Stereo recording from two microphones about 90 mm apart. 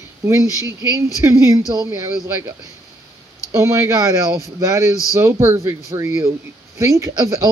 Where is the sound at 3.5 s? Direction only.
30° right (ahead or behind).